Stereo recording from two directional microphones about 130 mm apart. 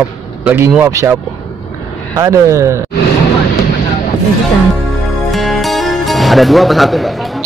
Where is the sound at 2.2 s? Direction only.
25° right (ahead or behind).